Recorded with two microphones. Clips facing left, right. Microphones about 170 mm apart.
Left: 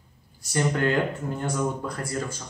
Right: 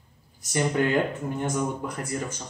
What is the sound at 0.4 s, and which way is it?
Speech, 15° right (ahead or behind).